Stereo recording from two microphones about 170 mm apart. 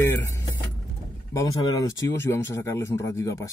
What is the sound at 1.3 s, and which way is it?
Speech, 20° left (ahead or behind).